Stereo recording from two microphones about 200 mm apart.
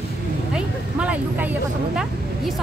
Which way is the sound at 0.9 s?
5° right (ahead or behind).